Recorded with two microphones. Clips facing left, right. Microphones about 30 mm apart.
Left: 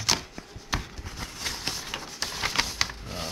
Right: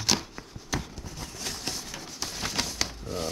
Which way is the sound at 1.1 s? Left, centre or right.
Left.